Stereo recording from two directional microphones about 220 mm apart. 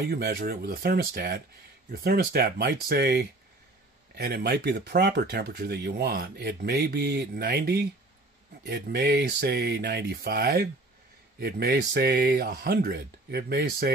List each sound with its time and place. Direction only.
0.0 s speech: 45° right (ahead or behind)